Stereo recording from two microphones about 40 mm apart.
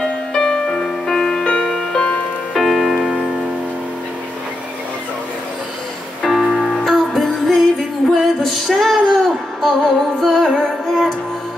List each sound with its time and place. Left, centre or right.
0.0 s music: centre
1.4 s music: left
1.7 s music: centre
6.2 s music: centre